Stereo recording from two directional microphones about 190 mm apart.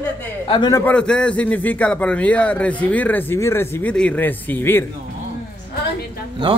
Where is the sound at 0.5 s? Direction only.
20° left (ahead or behind).